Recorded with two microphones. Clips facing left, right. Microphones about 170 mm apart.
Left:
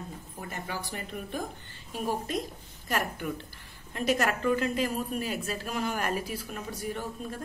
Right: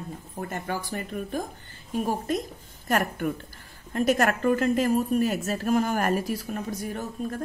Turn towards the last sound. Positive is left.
turn(degrees=-45)  # may be behind; listen again after turning